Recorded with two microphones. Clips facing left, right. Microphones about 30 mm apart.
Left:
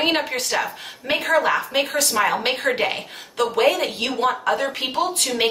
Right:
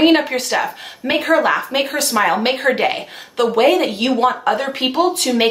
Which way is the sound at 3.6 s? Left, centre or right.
Right.